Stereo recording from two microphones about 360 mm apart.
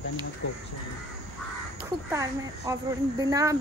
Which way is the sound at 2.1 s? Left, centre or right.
Centre.